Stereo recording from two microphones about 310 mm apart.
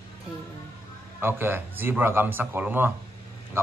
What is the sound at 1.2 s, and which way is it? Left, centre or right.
A man's voice, centre.